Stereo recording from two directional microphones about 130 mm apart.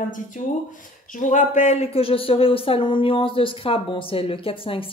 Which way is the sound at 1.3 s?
65° left (ahead or behind).